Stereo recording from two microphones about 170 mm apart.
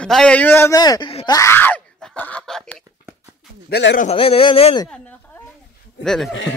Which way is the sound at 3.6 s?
80° left.